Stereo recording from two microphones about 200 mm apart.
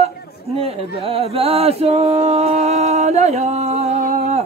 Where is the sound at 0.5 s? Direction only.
30° right (ahead or behind).